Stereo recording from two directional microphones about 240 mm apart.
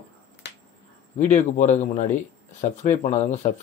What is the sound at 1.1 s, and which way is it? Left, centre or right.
A man's voice, left.